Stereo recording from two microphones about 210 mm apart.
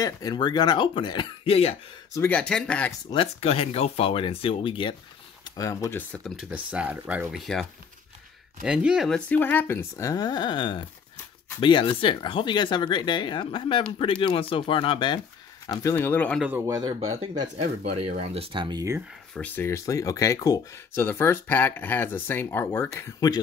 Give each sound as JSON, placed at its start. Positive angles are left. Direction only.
{"t": 0.0, "sound": "speech", "side_deg": 20}
{"t": 2.1, "sound": "speech", "side_deg": 5}
{"t": 3.1, "sound": "speech", "side_deg": 25}
{"t": 8.6, "sound": "speech", "side_deg": -5}
{"t": 16.4, "sound": "speech", "side_deg": -10}
{"t": 17.1, "sound": "speech", "side_deg": -30}
{"t": 19.3, "sound": "speech", "side_deg": 10}